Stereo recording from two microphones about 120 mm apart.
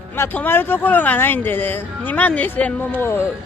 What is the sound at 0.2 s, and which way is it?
Speech, 15° left (ahead or behind).